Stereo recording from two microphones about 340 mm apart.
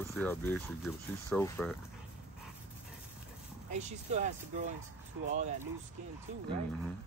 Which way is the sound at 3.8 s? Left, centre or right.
Centre.